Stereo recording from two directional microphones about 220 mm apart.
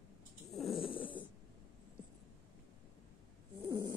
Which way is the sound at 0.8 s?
25° left (ahead or behind).